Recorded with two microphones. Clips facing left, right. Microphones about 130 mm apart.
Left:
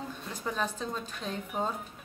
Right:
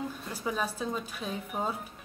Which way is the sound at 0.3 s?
10° right (ahead or behind).